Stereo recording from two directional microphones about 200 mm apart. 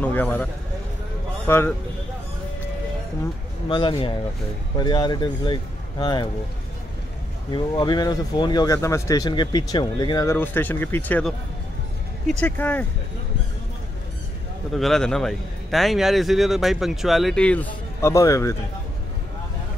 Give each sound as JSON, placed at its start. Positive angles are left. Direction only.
{"t": 0.0, "sound": "speech", "side_deg": 10}
{"t": 1.5, "sound": "speech", "side_deg": 10}
{"t": 3.6, "sound": "speech", "side_deg": 25}
{"t": 7.5, "sound": "speech", "side_deg": 20}
{"t": 14.7, "sound": "a man's voice", "side_deg": 0}